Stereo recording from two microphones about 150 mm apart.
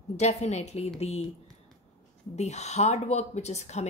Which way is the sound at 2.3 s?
50° left (ahead or behind).